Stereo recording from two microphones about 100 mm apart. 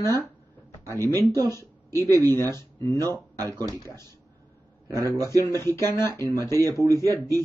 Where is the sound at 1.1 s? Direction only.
35° right (ahead or behind).